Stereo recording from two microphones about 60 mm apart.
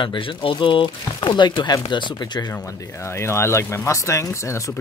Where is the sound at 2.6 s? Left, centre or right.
Left.